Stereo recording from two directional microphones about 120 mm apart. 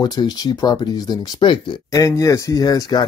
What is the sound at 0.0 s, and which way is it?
Speech, 35° left (ahead or behind).